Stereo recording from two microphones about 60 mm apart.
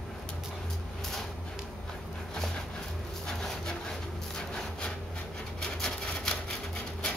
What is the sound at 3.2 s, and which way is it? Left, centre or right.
Wood, centre.